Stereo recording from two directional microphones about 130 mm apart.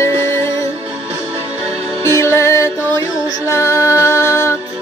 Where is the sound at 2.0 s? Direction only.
20° left (ahead or behind).